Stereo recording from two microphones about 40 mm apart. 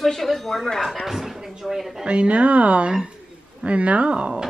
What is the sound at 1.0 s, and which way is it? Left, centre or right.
Speech, centre.